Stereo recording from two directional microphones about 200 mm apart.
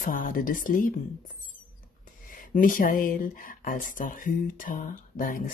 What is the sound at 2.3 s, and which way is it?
Speech, 40° left (ahead or behind).